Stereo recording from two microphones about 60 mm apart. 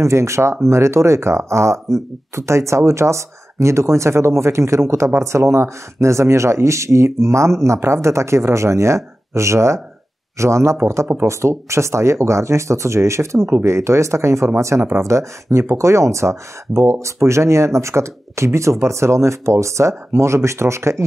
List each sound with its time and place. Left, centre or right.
0.0 s speech: right